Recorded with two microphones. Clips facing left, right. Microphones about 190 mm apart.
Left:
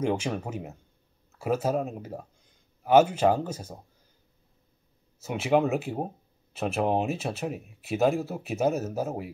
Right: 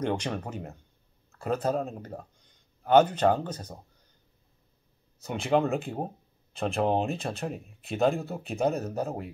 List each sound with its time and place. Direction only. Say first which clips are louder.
0.0 s speech: left 2 dB; 5° left (ahead or behind)
5.2 s speech: left 2 dB; 5° left (ahead or behind)